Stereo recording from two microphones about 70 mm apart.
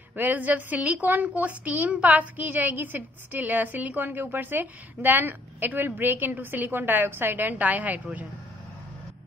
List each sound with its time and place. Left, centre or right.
0.1 s a woman's voice: right